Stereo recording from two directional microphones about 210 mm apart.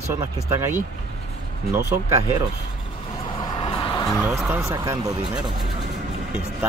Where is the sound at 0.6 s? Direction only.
10° right (ahead or behind).